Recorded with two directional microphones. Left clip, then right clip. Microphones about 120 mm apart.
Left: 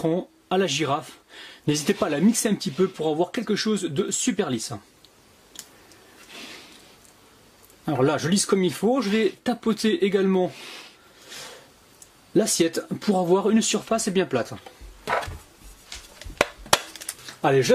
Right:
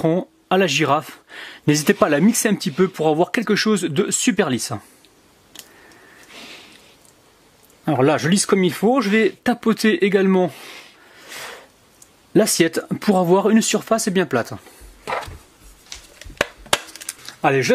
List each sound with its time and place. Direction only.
0.0 s speech: 30° right (ahead or behind)
7.8 s speech: 30° right (ahead or behind)
12.4 s speech: 35° right (ahead or behind)
16.7 s a sound: 10° right (ahead or behind)
17.3 s speech: 35° right (ahead or behind)